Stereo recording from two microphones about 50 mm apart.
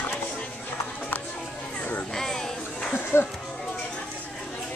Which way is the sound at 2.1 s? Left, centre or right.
Centre.